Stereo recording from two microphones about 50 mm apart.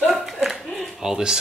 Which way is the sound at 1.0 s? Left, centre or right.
Centre.